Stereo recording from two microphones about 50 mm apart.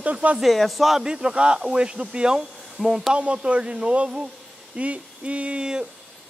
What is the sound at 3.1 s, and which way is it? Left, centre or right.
Speech, right.